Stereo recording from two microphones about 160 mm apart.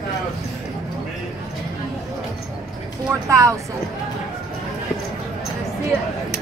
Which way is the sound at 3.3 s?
20° right (ahead or behind).